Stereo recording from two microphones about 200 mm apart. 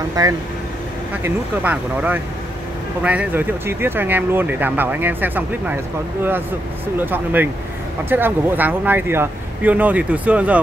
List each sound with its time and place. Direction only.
0.2 s speech: 20° right (ahead or behind)
1.2 s speech: 10° right (ahead or behind)
7.0 s speech: 10° right (ahead or behind)